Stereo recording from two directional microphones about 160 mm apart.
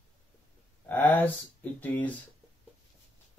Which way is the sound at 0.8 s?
10° left (ahead or behind).